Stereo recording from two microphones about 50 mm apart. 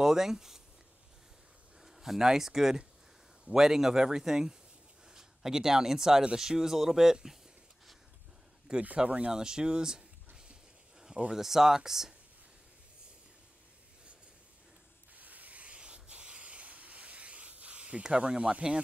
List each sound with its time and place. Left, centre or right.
0.0 s speech: centre
1.8 s speech: centre
8.8 s speech: right
9.3 s speech: centre
15.1 s rub: right